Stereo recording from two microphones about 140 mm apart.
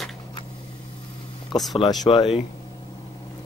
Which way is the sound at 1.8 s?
35° left (ahead or behind).